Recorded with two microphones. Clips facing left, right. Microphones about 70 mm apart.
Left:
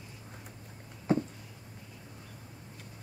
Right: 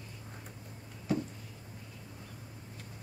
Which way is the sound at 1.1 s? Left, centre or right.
Left.